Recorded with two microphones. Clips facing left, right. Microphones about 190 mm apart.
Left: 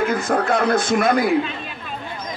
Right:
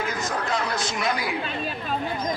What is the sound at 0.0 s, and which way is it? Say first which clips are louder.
Speech: left 8 dB; 55° left (ahead or behind).